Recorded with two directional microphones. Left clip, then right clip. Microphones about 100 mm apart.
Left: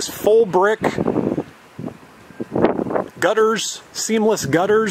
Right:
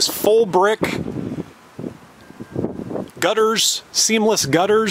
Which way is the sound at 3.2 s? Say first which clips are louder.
Right 1 dB; 15° right (ahead or behind).